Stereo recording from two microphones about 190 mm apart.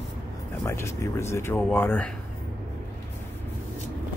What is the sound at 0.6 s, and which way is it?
Speech, 15° left (ahead or behind).